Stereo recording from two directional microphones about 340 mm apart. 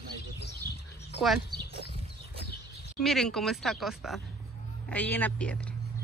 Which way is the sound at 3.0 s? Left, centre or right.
Centre.